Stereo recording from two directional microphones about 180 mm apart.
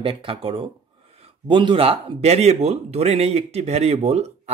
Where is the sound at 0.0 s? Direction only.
30° right (ahead or behind).